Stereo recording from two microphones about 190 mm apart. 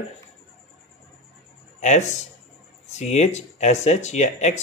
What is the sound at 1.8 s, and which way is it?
Speech, 40° left (ahead or behind).